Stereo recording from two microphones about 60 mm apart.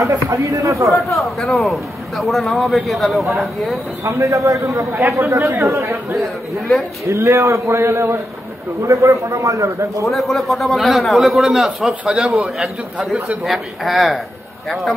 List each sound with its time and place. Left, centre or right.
0.3 s a man's voice: right
0.8 s a man's voice: centre
4.0 s a man's voice: right
10.0 s a man's voice: centre
12.0 s a man's voice: centre
12.3 s a man's voice: centre